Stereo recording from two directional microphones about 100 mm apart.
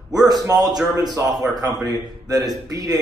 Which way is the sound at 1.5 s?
40° right (ahead or behind).